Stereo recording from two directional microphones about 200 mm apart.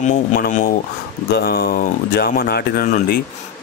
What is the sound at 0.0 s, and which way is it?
Speech, 40° left (ahead or behind).